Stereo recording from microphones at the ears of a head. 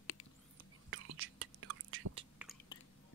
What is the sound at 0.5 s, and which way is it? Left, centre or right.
Whispering, right.